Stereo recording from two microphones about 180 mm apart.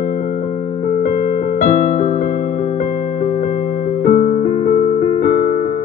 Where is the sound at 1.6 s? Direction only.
45° left (ahead or behind).